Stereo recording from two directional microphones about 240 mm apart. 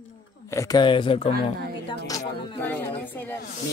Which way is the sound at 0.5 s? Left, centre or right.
Centre.